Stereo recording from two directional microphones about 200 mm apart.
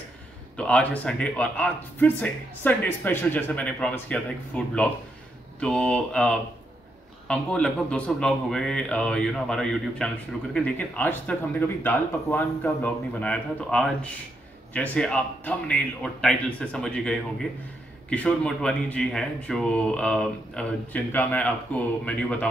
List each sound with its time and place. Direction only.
0.6 s speech: 5° left (ahead or behind)